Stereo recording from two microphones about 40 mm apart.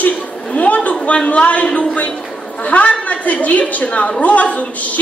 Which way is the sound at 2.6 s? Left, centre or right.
Left.